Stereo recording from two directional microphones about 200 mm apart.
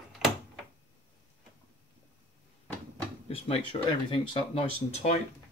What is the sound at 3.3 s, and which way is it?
Speech, 30° left (ahead or behind).